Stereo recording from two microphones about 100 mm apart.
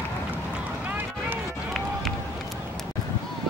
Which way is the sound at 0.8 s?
15° right (ahead or behind).